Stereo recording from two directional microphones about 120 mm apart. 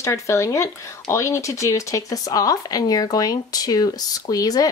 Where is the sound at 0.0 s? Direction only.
25° left (ahead or behind).